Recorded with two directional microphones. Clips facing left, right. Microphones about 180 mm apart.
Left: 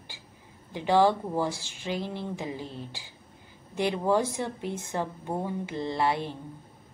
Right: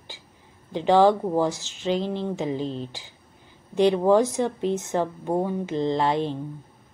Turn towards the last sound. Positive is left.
turn(degrees=-20)  # may be behind; listen again after turning